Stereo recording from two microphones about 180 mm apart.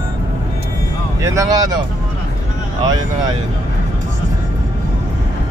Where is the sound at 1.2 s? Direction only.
20° right (ahead or behind).